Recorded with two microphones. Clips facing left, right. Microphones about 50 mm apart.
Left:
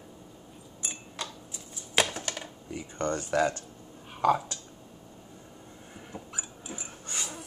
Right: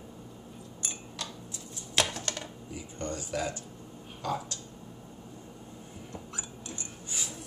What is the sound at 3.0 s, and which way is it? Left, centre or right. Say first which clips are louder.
Speech: left 7 dB; left.